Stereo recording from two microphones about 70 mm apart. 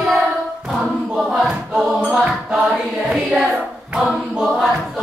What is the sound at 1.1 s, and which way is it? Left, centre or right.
Choir, centre.